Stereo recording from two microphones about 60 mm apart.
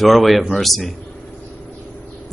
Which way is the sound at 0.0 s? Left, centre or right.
Centre.